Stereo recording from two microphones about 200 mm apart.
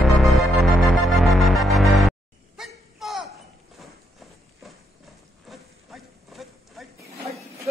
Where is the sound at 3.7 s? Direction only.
Centre (ahead or behind).